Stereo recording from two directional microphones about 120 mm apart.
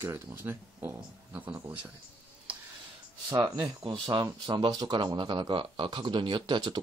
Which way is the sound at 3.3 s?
40° right (ahead or behind).